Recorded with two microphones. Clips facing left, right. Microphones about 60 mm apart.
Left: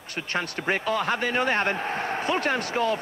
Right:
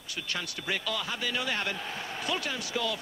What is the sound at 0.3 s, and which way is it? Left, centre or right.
Speech, left.